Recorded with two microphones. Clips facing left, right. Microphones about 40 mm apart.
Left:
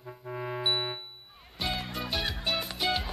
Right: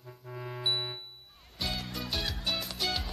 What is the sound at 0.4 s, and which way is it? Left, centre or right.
Music, left.